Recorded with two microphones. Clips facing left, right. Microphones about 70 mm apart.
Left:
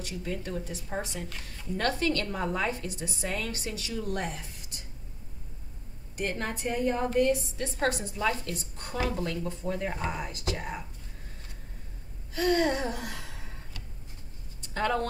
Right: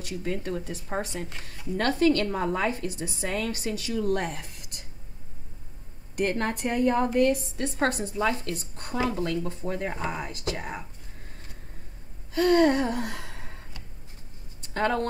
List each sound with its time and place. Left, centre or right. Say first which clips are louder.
0.2 s a woman's voice: right 4 dB; right
6.1 s a woman's voice: right 6 dB; right
7.9 s a woman's voice: right 3 dB; right
8.9 s a woman's voice: right 3 dB; right
9.2 s a woman's voice: right 3 dB; right
12.4 s gasp: right 5 dB; right
14.7 s speech: right 3 dB; right